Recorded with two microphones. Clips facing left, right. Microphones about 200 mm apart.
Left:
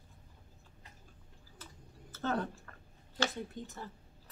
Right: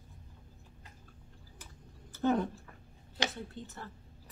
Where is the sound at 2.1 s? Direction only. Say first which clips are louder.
Right 5 dB; 15° right (ahead or behind).